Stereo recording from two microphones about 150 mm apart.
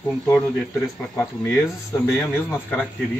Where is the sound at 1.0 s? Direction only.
15° left (ahead or behind).